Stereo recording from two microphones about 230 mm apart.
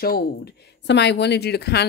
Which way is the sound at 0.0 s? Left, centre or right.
Left.